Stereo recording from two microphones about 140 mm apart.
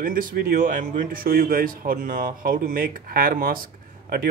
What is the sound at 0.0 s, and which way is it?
Speech, 85° right.